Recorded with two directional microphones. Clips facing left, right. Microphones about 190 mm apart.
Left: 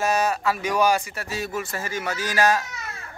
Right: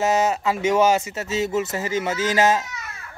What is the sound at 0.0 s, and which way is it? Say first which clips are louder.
A man's voice: right 2 dB; 20° right (ahead or behind).